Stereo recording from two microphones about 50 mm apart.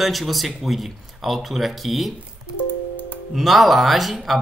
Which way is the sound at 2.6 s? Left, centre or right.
Left.